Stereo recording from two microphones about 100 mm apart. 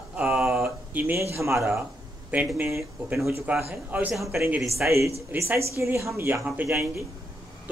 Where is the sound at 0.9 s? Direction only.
20° right (ahead or behind).